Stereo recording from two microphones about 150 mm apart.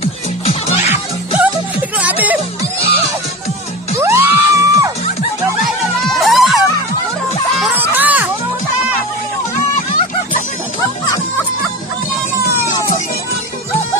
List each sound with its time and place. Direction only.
0.5 s music: 45° left (ahead or behind)
1.4 s music: 10° right (ahead or behind)
4.0 s music: 20° right (ahead or behind)
6.0 s music: centre (ahead or behind)
7.7 s music: 10° right (ahead or behind)